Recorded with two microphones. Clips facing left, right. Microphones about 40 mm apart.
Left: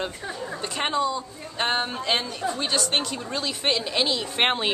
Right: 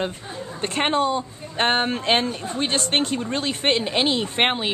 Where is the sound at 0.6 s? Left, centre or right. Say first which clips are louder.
Right 4 dB; right.